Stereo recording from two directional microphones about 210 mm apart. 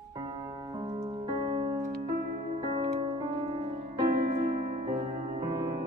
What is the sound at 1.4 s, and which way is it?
Music, 20° right (ahead or behind).